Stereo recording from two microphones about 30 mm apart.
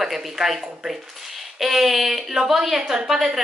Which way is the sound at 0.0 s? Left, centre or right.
Centre.